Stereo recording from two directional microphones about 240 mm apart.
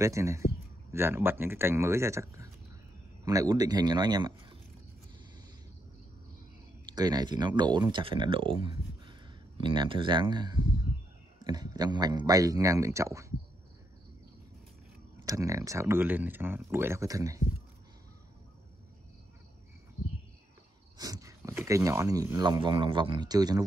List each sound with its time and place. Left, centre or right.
0.0 s speech: centre
7.0 s speech: centre
15.2 s speech: centre
21.0 s speech: centre